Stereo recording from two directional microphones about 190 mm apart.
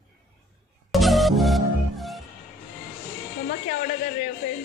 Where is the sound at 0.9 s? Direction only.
Centre (ahead or behind).